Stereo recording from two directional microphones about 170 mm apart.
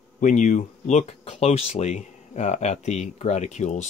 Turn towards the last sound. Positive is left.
turn(degrees=45)  # may be behind; listen again after turning